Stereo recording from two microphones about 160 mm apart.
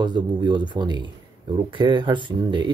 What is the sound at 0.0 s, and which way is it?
Speech, 30° right (ahead or behind).